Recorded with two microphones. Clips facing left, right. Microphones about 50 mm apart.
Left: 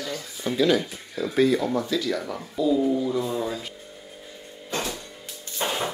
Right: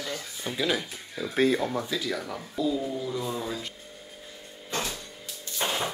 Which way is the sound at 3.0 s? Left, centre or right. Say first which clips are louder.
Left 6 dB; centre.